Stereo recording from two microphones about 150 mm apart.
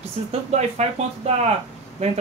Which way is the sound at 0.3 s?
50° right (ahead or behind).